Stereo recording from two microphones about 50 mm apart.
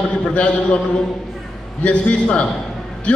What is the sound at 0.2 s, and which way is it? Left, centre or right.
Speech, left.